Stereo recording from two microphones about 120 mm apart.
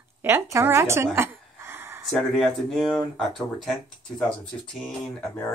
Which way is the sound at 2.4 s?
Centre (ahead or behind).